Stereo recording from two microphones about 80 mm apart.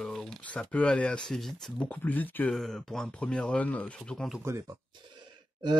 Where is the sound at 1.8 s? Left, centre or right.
Left.